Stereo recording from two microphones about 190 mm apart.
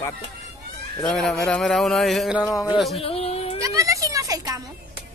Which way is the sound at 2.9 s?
30° left (ahead or behind).